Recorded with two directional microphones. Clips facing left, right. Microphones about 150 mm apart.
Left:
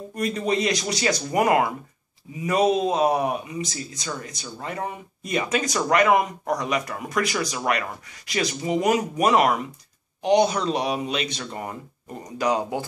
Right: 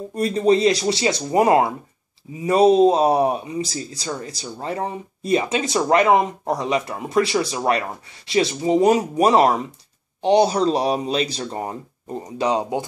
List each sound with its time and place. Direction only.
0.1 s speech: 30° right (ahead or behind)